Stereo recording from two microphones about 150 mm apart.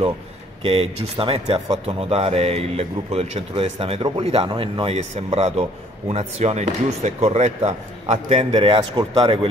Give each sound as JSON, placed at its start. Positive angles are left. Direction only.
{"t": 0.6, "sound": "speech", "side_deg": -40}
{"t": 8.5, "sound": "speech", "side_deg": -30}